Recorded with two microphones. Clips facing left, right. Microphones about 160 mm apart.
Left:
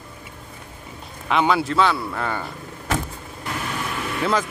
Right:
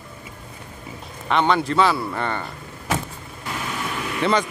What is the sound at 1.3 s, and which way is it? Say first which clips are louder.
Speech: even; 5° left (ahead or behind).